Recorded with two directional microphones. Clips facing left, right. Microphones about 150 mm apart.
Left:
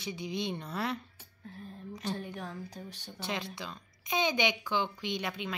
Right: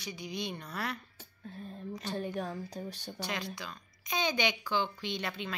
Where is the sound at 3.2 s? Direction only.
25° left (ahead or behind).